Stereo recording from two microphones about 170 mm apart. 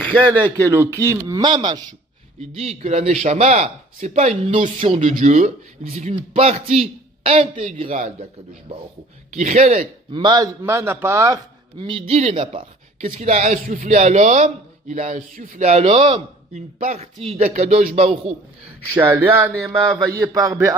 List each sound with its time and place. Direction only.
0.6 s speech: 20° right (ahead or behind)
2.5 s a man's voice: 40° right (ahead or behind)
10.1 s speech: 25° right (ahead or behind)
10.6 s speech: 15° right (ahead or behind)
11.8 s speech: 35° right (ahead or behind)
16.5 s speech: 45° right (ahead or behind)
18.9 s speech: 10° right (ahead or behind)